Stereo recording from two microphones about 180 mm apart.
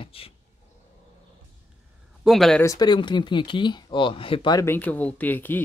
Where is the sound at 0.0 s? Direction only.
30° left (ahead or behind).